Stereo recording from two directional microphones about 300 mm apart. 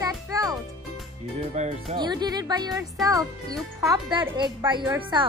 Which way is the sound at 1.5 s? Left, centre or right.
Right.